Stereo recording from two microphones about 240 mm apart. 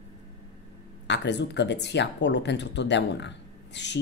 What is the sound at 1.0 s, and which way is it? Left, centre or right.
Speech, left.